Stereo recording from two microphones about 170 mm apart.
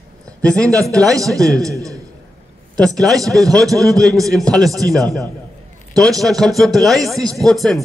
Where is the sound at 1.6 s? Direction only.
20° right (ahead or behind).